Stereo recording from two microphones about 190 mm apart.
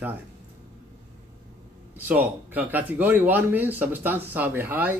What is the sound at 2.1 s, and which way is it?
Speech, 10° right (ahead or behind).